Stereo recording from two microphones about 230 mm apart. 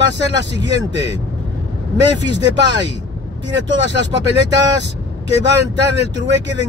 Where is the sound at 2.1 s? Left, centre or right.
Right.